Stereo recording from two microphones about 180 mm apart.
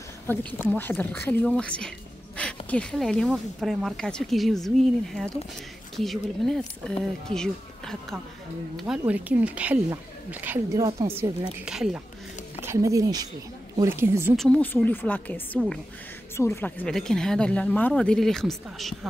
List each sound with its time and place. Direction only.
0.7 s speech: 10° left (ahead or behind)
12.6 s speech: 15° right (ahead or behind)
14.3 s speech: 5° left (ahead or behind)